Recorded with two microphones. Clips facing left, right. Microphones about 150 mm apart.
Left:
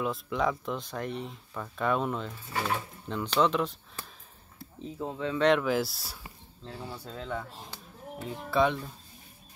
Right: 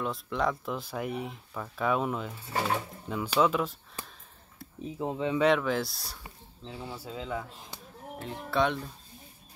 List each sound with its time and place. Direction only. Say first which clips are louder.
0.0 s speech: left 1 dB; centre (ahead or behind)
4.8 s speech: right 2 dB; 15° right (ahead or behind)
5.4 s speech: left 2 dB; centre (ahead or behind)
6.7 s speech: right 1 dB; 5° right (ahead or behind)